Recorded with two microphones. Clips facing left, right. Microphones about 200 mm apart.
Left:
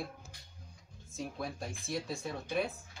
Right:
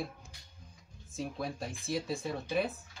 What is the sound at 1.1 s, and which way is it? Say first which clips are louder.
Speech: right 2 dB; centre (ahead or behind).